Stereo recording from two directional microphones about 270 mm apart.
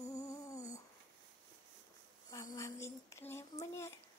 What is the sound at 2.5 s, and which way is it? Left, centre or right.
Child singing, centre.